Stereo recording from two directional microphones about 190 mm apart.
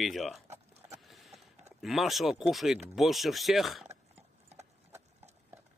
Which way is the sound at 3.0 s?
Centre (ahead or behind).